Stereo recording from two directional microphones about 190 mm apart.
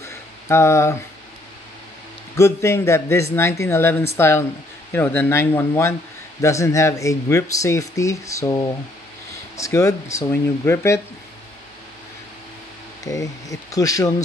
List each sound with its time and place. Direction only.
0.0 s a sound: 15° left (ahead or behind)
2.3 s speech: 15° left (ahead or behind)
13.0 s speech: 20° left (ahead or behind)